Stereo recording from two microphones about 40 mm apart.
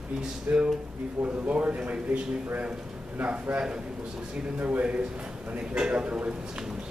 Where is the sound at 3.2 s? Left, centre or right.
Right.